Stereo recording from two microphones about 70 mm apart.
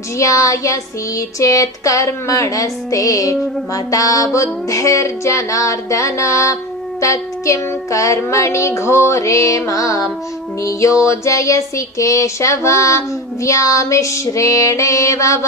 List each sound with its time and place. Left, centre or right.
0.2 s child singing: left